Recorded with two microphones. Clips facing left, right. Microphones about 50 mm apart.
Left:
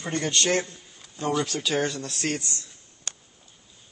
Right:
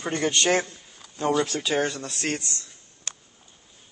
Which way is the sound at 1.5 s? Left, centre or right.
Centre.